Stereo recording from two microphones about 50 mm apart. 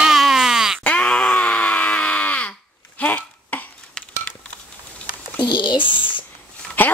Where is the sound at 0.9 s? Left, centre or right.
Centre.